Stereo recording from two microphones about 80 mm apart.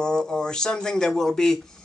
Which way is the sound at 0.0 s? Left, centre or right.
Centre.